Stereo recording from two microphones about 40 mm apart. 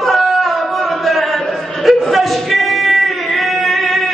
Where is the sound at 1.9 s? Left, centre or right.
Centre.